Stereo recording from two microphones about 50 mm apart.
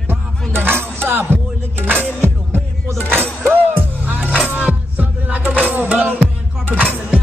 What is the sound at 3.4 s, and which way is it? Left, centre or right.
Music, right.